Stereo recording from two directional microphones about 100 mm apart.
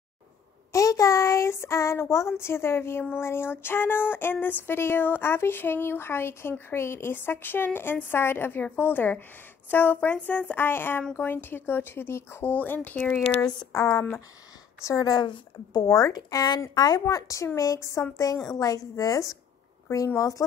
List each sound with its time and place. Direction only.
0.7 s child singing: 35° left (ahead or behind); by 13.2 s 15° left (ahead or behind)
13.7 s speech: 30° left (ahead or behind)